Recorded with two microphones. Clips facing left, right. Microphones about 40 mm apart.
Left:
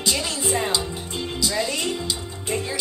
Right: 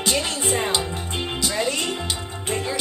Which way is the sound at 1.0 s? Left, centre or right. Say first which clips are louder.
Right 1 dB; right.